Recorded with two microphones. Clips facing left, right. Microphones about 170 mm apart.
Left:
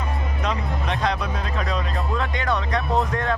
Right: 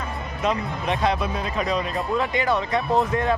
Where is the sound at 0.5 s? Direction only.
5° right (ahead or behind).